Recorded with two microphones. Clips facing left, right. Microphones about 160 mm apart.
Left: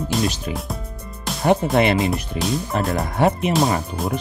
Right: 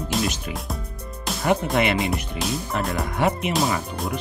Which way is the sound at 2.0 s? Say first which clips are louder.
Left 3 dB; centre (ahead or behind).